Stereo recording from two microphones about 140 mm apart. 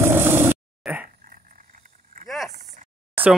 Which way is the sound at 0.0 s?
15° right (ahead or behind).